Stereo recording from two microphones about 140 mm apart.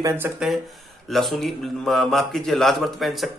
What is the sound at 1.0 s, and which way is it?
A man's voice, centre (ahead or behind).